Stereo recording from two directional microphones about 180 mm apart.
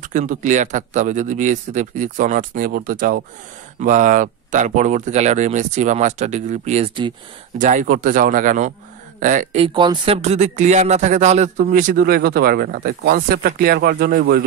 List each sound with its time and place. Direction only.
0.0 s speech: 45° right (ahead or behind)
9.6 s speech: 30° right (ahead or behind); by 14.4 s 55° right (ahead or behind)